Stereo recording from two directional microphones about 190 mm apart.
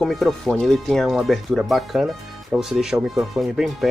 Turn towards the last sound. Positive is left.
turn(degrees=0)  # may be behind; listen again after turning